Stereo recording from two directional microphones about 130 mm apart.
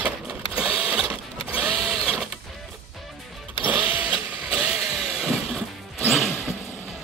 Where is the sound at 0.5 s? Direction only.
10° right (ahead or behind).